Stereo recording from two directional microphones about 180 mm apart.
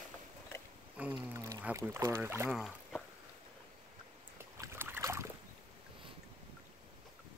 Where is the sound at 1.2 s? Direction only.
15° right (ahead or behind).